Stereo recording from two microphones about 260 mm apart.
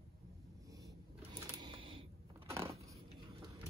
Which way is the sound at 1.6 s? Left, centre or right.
Centre.